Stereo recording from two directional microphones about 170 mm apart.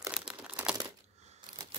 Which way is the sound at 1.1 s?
40° right (ahead or behind).